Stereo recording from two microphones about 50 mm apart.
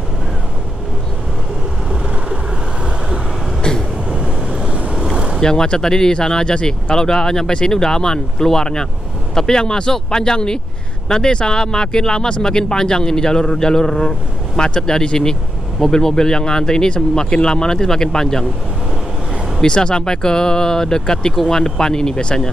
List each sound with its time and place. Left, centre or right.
3.6 s train: centre
4.1 s vehicle: centre
5.4 s speech: centre
19.6 s speech: centre